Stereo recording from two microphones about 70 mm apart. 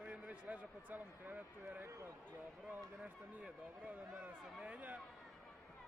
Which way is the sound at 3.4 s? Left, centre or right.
Right.